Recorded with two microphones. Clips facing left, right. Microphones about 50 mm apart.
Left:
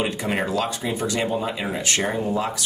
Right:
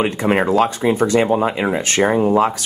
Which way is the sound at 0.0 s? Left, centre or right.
Right.